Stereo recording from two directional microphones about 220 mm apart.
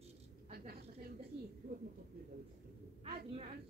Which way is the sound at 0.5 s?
45° right (ahead or behind).